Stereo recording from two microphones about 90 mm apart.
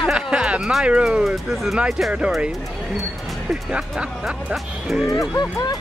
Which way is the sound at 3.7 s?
10° right (ahead or behind).